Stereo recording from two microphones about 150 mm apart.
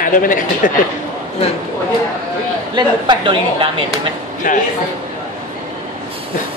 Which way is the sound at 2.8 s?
30° right (ahead or behind).